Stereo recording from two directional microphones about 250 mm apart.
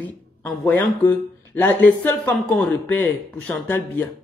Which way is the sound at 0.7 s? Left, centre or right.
Centre.